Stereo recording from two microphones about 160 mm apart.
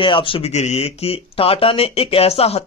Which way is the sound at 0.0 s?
30° left (ahead or behind).